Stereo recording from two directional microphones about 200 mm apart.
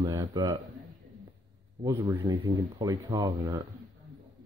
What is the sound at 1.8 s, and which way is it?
Speech, 15° right (ahead or behind).